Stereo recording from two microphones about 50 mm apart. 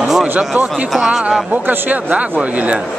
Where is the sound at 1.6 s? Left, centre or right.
Right.